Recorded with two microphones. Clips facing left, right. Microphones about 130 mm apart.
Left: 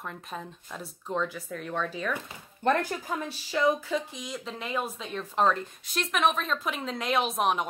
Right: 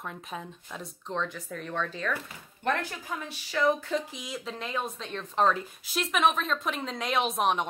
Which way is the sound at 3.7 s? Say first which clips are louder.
Even; centre (ahead or behind).